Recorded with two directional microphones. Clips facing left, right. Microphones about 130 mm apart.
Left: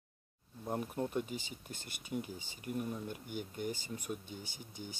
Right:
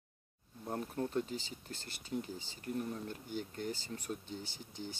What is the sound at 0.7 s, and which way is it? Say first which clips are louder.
Speech: left 1 dB; 15° left (ahead or behind).